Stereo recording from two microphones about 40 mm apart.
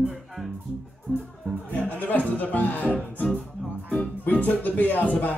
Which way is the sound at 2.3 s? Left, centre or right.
Left.